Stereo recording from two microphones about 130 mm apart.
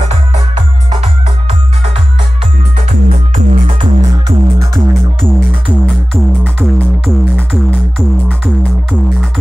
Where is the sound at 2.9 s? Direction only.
50° right (ahead or behind).